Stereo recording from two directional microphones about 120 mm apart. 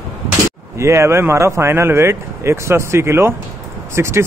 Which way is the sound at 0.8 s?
25° right (ahead or behind).